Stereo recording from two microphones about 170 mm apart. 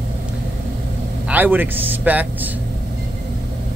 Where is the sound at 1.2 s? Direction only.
10° right (ahead or behind).